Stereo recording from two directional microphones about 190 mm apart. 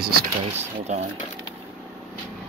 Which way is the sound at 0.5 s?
35° right (ahead or behind).